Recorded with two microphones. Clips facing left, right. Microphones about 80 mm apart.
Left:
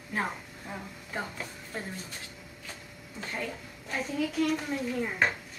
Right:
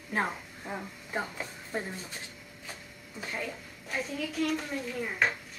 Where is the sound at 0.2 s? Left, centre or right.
Centre.